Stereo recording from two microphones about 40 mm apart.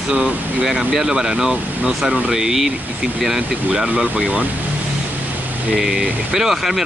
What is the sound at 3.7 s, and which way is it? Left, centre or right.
Speech, centre.